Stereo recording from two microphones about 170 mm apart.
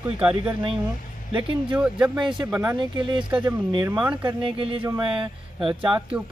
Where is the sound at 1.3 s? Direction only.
30° right (ahead or behind).